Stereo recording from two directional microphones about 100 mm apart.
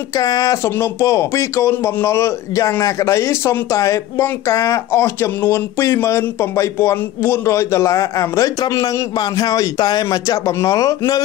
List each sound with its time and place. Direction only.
0.2 s speech: 35° left (ahead or behind)